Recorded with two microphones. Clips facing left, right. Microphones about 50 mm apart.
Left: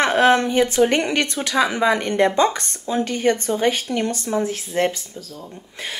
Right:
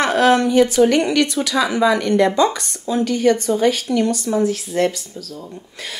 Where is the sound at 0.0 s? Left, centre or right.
Left.